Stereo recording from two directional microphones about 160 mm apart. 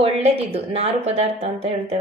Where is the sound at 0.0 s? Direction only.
35° right (ahead or behind).